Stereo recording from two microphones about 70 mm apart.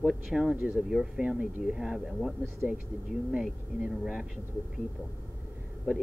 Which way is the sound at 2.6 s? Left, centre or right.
Right.